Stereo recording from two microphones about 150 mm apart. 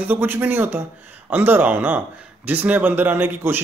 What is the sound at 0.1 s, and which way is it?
A man's voice, 15° right (ahead or behind).